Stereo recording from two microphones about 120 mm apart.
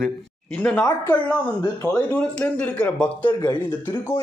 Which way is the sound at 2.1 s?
10° left (ahead or behind).